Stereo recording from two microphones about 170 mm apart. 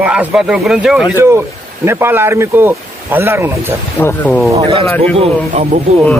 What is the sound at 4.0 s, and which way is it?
Speech, 10° left (ahead or behind).